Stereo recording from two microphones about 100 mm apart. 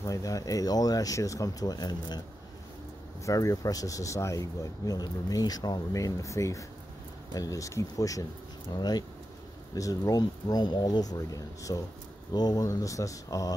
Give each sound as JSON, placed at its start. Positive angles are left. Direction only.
{"t": 0.0, "sound": "speech", "side_deg": 35}
{"t": 3.3, "sound": "speech", "side_deg": 35}